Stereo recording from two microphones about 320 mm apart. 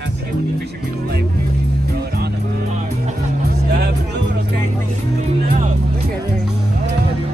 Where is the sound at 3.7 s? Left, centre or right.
Right.